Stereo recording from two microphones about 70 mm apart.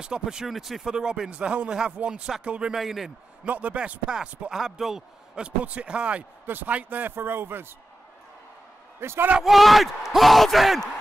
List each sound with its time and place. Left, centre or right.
0.0 s a man's voice: centre
3.4 s a man's voice: centre
6.4 s a man's voice: right
9.0 s a man's voice: right
9.4 s speech: centre